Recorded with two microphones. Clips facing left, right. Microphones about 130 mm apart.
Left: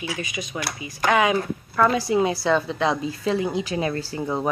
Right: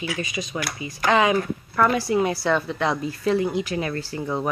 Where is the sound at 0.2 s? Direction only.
15° left (ahead or behind).